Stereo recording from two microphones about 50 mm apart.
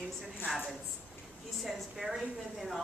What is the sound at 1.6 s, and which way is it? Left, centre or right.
A woman's voice, centre.